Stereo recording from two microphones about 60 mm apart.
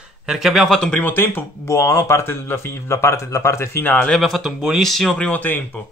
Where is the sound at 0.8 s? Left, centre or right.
Centre.